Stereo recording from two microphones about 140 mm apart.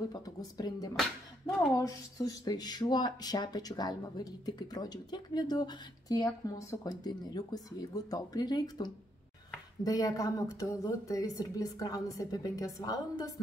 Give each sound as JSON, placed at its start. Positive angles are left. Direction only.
{"t": 0.1, "sound": "speech", "side_deg": 25}